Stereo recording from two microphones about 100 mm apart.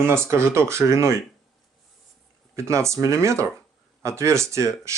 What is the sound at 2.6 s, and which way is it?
Speech, 30° right (ahead or behind).